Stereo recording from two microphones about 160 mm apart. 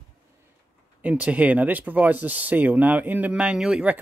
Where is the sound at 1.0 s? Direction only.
10° right (ahead or behind).